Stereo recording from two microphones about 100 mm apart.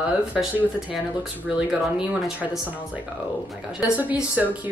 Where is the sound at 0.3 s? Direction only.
10° right (ahead or behind).